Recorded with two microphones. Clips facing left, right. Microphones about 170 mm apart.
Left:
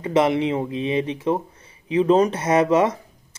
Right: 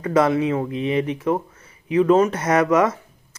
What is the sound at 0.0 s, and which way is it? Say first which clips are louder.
Speech: right 1 dB; 25° left (ahead or behind).